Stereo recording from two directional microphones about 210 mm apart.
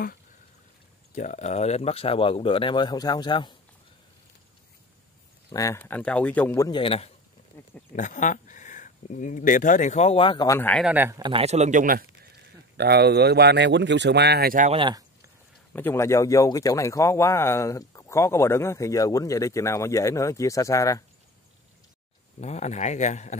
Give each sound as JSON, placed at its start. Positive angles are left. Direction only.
{"t": 1.1, "sound": "speech", "side_deg": 35}
{"t": 5.5, "sound": "speech", "side_deg": 15}
{"t": 7.9, "sound": "speech", "side_deg": 35}
{"t": 10.7, "sound": "speech", "side_deg": -5}
{"t": 14.7, "sound": "a sound", "side_deg": -20}
{"t": 15.7, "sound": "speech", "side_deg": 10}
{"t": 22.4, "sound": "speech", "side_deg": 30}